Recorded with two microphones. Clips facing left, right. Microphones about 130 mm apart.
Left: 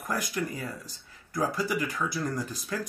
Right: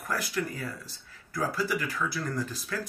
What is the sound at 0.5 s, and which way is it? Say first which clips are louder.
Speech: left 1 dB; 40° left (ahead or behind).